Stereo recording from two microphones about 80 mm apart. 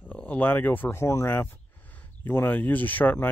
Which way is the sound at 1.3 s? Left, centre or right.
Left.